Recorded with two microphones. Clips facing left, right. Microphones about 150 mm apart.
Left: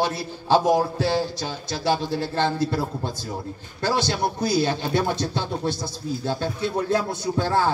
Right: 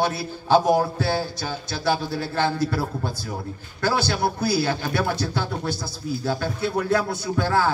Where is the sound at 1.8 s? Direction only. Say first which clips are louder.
Left 1 dB; 25° left (ahead or behind).